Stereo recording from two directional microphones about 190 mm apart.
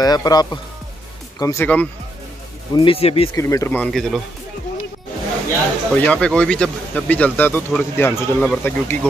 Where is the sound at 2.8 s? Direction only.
30° left (ahead or behind).